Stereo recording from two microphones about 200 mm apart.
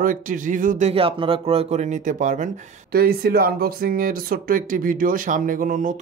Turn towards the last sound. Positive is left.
turn(degrees=-40)  # may be behind; listen again after turning